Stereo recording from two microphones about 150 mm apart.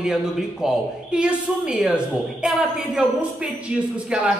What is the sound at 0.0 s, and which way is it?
Speech, 5° right (ahead or behind).